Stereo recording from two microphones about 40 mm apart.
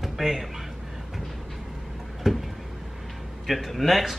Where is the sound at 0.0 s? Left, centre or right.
Centre.